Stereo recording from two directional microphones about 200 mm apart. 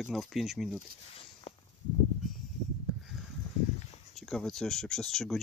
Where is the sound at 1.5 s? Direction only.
35° left (ahead or behind).